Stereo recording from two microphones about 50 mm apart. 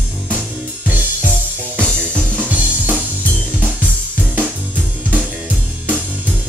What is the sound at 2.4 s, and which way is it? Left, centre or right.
Drum kit, right.